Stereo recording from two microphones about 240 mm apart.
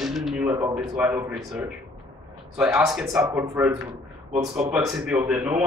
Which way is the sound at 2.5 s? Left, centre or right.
Centre.